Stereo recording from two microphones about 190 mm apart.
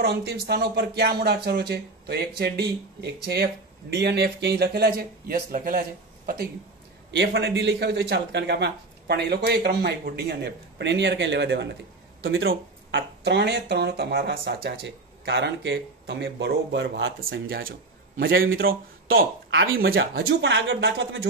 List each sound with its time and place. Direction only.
0.0 s speech: 60° right (ahead or behind)
7.1 s speech: 65° right (ahead or behind); by 18.5 s 50° right (ahead or behind)
18.5 s speech: 90° right
19.8 s speech: 55° right (ahead or behind)